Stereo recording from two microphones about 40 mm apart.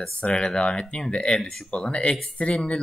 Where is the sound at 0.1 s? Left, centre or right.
Left.